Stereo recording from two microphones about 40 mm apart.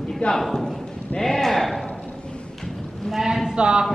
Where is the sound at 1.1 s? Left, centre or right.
Centre.